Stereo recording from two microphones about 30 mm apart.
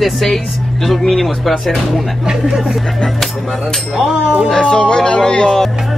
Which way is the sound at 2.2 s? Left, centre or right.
Right.